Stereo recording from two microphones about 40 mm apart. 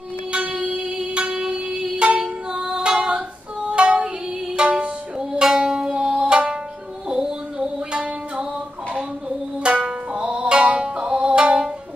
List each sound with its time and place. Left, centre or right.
0.6 s music: right
2.9 s female singing: right
3.7 s music: right
9.8 s music: right